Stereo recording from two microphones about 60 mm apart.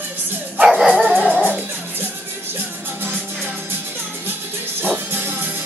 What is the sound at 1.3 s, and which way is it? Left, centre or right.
Music, left.